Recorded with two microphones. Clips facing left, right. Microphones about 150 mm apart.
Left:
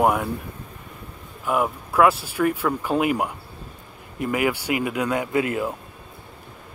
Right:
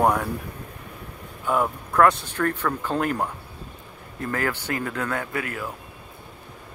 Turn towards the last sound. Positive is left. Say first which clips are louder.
# left 7 dB
turn(degrees=20)  # may be behind; listen again after turning